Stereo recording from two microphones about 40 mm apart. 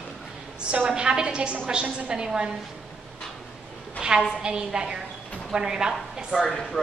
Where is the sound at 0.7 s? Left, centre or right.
Right.